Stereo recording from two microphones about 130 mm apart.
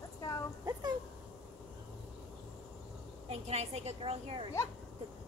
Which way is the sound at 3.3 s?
55° right (ahead or behind).